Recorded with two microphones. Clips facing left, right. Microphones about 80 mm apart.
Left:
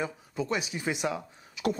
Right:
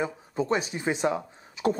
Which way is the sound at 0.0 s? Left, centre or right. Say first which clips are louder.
Right 4 dB; right.